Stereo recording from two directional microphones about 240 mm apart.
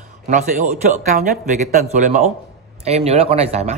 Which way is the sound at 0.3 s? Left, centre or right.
Right.